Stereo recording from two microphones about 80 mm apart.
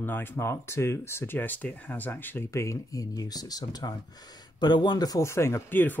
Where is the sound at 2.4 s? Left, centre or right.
Left.